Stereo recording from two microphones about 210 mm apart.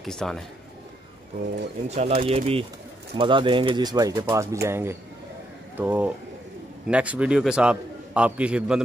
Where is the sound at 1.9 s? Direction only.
30° right (ahead or behind).